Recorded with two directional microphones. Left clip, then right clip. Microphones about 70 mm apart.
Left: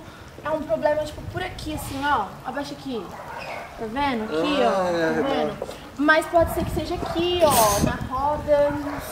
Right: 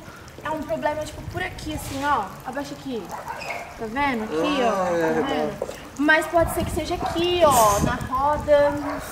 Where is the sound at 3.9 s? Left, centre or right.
Centre.